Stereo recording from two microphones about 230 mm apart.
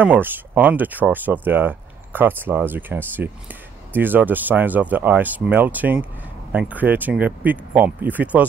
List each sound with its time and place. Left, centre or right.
0.0 s speech: centre